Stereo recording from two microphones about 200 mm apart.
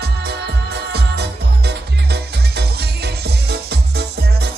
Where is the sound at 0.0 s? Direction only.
55° right (ahead or behind).